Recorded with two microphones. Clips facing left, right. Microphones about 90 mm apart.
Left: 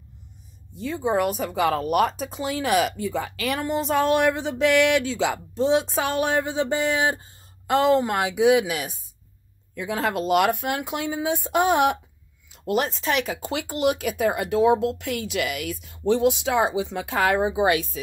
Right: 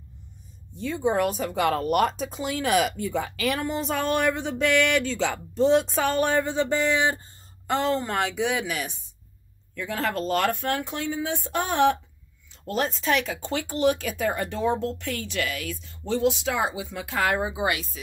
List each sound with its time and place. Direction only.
0.7 s speech: centre (ahead or behind)
7.7 s speech: 5° left (ahead or behind); by 17.6 s 25° left (ahead or behind)